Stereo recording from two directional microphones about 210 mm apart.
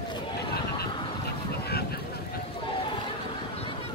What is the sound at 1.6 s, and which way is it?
Boat, 50° left (ahead or behind).